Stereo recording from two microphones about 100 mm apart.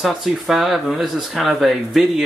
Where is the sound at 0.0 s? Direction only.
Centre (ahead or behind).